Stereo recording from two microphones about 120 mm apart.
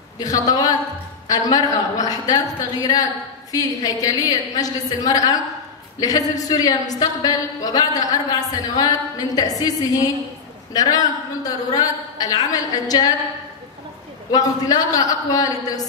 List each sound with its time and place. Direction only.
0.2 s a woman's voice: 30° left (ahead or behind)
14.3 s a woman's voice: 30° left (ahead or behind)